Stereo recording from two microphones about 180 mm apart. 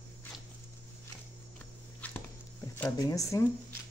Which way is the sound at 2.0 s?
10° left (ahead or behind).